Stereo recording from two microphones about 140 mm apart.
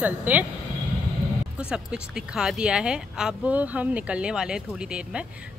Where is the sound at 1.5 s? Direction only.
5° right (ahead or behind).